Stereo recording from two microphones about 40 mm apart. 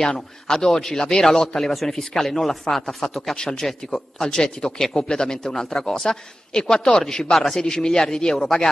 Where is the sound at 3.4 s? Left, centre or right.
Centre.